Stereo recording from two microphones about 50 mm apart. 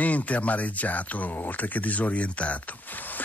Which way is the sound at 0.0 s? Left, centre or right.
Left.